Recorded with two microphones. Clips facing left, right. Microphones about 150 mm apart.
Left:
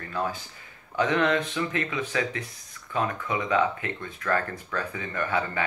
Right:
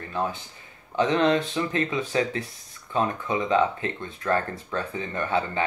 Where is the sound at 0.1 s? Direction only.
25° right (ahead or behind).